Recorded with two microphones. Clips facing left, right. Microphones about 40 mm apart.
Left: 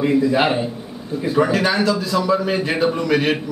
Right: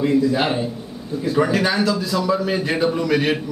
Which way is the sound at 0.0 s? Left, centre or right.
Centre.